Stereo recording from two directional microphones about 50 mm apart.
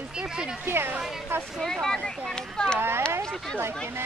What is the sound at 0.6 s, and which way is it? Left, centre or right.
Speech, right.